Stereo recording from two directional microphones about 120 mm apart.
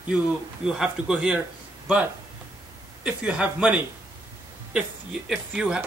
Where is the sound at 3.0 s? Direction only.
10° right (ahead or behind).